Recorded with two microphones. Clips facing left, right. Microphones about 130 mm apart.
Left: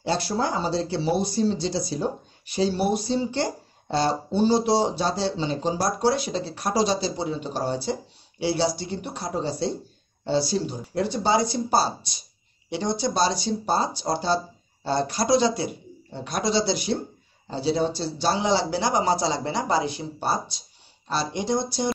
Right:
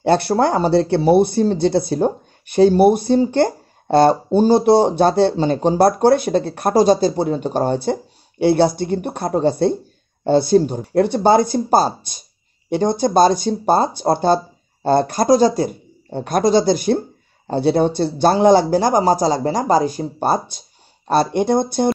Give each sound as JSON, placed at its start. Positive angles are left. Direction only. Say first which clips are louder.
{"t": 0.0, "sound": "speech", "louder": "right 10 dB", "side_deg": -60}